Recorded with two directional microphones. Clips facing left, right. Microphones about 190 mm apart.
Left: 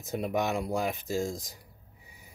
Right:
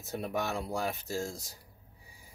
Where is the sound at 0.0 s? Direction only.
15° left (ahead or behind).